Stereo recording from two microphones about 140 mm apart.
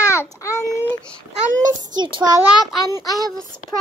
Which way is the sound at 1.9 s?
30° right (ahead or behind).